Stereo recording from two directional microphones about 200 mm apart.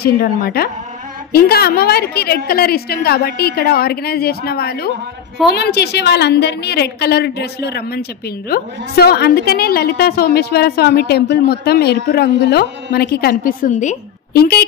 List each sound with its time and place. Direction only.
0.0 s a woman's voice: 50° left (ahead or behind)